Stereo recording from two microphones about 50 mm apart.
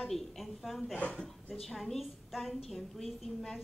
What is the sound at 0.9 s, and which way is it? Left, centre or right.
Speech, left.